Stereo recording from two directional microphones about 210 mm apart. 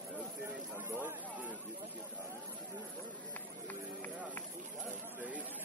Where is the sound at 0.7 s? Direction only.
10° right (ahead or behind).